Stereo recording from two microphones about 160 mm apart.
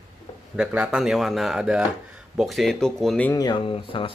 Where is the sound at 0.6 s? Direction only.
5° right (ahead or behind).